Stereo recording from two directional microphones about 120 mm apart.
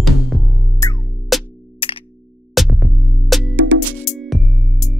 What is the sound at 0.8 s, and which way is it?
Music, 25° left (ahead or behind).